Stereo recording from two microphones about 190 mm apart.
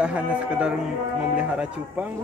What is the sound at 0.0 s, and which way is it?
Speech, 5° right (ahead or behind).